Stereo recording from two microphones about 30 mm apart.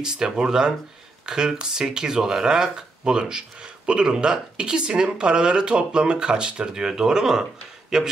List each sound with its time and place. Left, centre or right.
0.0 s speech: right